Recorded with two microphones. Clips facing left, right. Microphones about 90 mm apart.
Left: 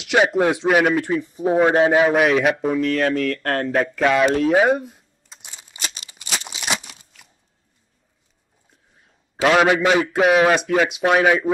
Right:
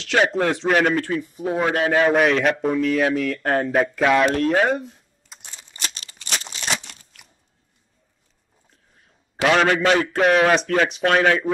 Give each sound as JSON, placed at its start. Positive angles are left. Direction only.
{"t": 0.0, "sound": "a man's voice", "side_deg": 10}
{"t": 1.1, "sound": "speech", "side_deg": 25}
{"t": 2.0, "sound": "a man's voice", "side_deg": 5}
{"t": 5.4, "sound": "crumpling", "side_deg": 10}
{"t": 9.4, "sound": "a man's voice", "side_deg": 10}